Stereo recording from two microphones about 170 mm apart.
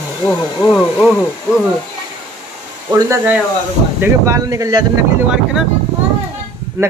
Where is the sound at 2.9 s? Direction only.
15° right (ahead or behind).